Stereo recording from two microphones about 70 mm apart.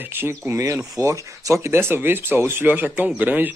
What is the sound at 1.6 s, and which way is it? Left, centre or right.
Speech, right.